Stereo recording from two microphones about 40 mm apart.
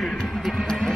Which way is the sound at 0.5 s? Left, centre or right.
Centre.